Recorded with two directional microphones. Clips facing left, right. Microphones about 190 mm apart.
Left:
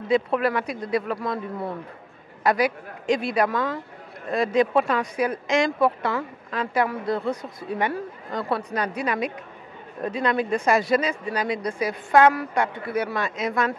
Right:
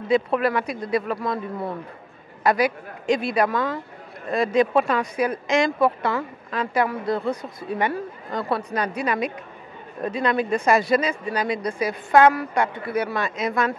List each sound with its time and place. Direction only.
0.4 s a man's voice: 15° right (ahead or behind)